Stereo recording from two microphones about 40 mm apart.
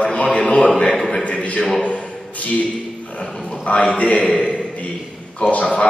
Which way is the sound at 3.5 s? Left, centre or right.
Left.